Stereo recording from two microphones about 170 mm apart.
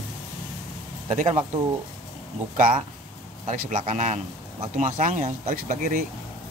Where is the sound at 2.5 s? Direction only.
50° right (ahead or behind).